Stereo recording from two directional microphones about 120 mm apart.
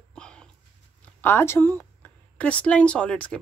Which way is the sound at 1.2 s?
20° left (ahead or behind).